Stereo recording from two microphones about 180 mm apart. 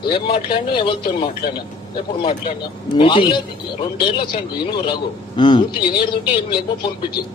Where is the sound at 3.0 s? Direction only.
25° left (ahead or behind).